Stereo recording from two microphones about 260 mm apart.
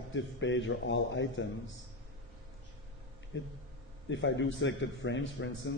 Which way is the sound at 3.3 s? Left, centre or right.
Left.